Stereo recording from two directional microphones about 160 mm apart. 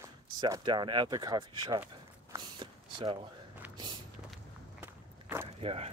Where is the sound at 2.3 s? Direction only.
30° right (ahead or behind).